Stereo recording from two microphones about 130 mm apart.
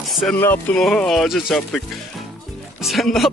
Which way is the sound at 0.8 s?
5° left (ahead or behind).